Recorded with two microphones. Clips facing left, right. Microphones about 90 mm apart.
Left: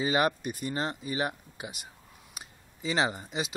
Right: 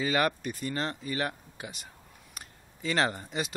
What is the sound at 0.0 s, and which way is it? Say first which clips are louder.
Speech: left 1 dB; 20° left (ahead or behind).